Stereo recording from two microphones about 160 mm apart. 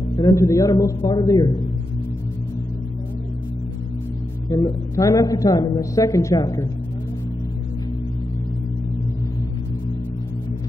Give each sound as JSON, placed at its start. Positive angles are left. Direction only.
{"t": 0.1, "sound": "a man's voice", "side_deg": 20}
{"t": 4.5, "sound": "a man's voice", "side_deg": 20}